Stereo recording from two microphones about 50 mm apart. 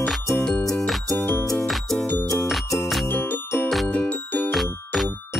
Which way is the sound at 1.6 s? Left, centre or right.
Centre.